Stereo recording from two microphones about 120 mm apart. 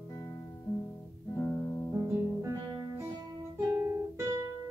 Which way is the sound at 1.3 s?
20° left (ahead or behind).